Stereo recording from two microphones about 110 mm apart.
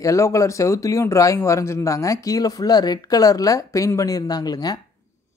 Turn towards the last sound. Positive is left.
turn(degrees=35)  # may be behind; listen again after turning